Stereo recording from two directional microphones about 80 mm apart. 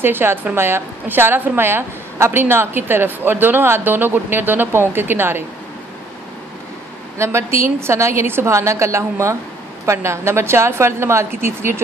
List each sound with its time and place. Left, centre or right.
0.0 s a woman's voice: right
7.2 s a woman's voice: right